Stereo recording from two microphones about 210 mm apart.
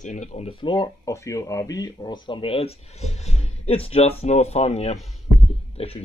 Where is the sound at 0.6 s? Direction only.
20° left (ahead or behind).